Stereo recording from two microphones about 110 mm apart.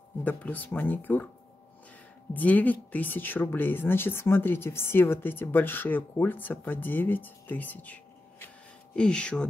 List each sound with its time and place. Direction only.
0.2 s speech: 15° left (ahead or behind)
2.3 s speech: 15° left (ahead or behind)